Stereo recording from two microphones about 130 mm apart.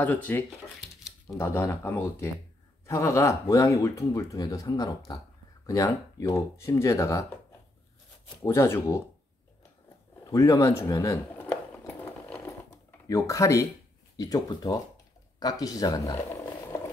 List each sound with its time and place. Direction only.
0.0 s speech: 10° left (ahead or behind)
8.4 s speech: 20° left (ahead or behind)
10.2 s a sound: 25° left (ahead or behind)
13.1 s speech: 25° left (ahead or behind)